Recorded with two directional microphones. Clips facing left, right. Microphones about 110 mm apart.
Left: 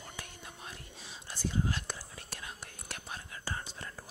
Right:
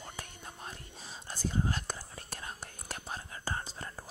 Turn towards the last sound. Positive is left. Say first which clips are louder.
# right 2 dB
turn(degrees=-35)  # may be behind; listen again after turning